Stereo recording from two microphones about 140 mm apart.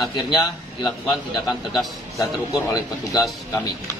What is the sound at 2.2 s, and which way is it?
A man's voice, 25° left (ahead or behind).